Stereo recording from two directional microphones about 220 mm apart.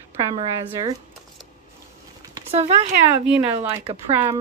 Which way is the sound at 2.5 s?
30° right (ahead or behind).